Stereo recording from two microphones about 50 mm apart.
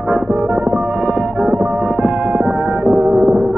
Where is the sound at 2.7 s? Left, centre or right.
Centre.